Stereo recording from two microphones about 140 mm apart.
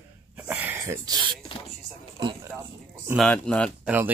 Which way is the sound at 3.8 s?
10° right (ahead or behind).